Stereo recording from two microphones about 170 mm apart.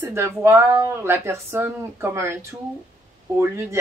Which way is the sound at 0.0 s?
15° right (ahead or behind).